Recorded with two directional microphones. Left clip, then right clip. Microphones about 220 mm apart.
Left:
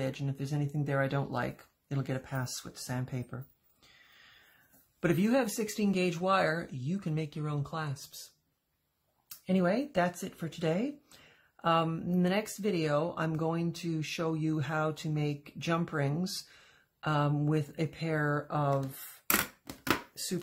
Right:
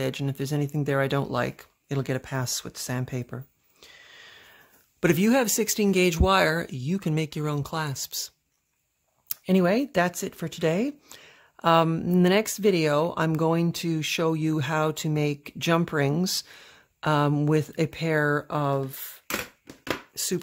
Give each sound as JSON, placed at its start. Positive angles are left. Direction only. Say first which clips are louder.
{"t": 0.0, "sound": "speech", "louder": "right 7 dB", "side_deg": -45}
{"t": 3.8, "sound": "sniff", "louder": "right 10 dB", "side_deg": -45}
{"t": 5.0, "sound": "speech", "louder": "right 7 dB", "side_deg": -45}
{"t": 9.3, "sound": "speech", "louder": "right 7 dB", "side_deg": -45}